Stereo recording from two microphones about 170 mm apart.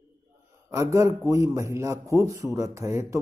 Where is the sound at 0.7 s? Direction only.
20° right (ahead or behind).